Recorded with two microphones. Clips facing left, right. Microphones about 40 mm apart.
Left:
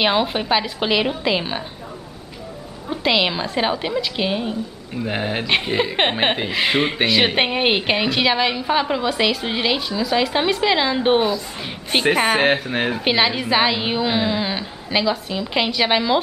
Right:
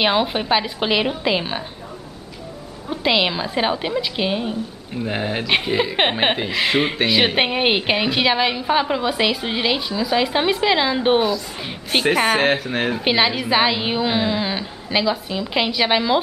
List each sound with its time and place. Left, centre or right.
0.0 s a woman's voice: centre
2.9 s a woman's voice: centre